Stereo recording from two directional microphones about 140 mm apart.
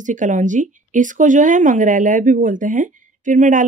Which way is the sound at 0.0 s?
65° right (ahead or behind).